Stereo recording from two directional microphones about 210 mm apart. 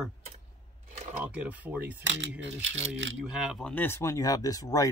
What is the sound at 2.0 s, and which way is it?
Speech, 60° right (ahead or behind).